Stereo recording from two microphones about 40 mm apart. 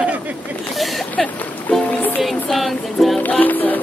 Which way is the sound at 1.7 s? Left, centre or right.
Left.